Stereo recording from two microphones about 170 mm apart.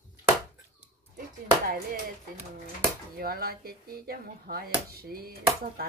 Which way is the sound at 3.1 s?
65° right (ahead or behind).